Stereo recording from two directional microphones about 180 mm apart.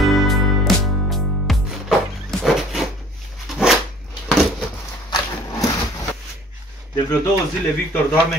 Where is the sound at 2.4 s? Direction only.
Centre (ahead or behind).